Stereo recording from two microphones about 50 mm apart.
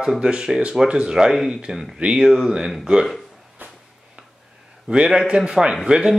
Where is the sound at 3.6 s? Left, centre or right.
Right.